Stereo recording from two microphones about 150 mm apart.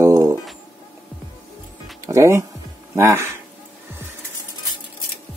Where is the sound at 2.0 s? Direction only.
20° right (ahead or behind).